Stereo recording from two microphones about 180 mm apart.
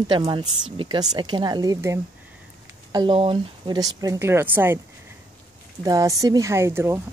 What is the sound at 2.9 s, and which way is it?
Speech, 30° right (ahead or behind).